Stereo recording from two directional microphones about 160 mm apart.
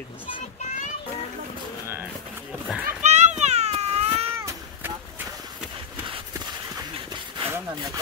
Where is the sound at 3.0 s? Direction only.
45° right (ahead or behind).